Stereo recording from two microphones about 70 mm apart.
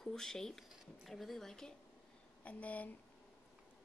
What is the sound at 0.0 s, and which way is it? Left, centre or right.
A woman's voice, centre.